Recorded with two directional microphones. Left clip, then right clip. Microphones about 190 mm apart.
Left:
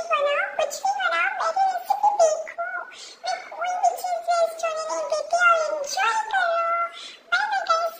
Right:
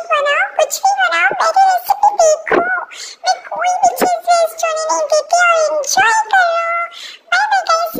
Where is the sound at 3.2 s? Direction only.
60° right (ahead or behind).